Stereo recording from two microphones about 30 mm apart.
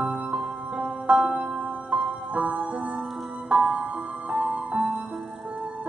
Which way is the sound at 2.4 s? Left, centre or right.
Right.